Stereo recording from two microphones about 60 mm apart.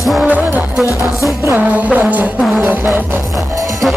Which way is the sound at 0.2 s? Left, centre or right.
Right.